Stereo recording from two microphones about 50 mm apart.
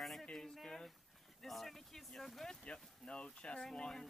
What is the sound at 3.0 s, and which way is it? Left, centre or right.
Speech, centre.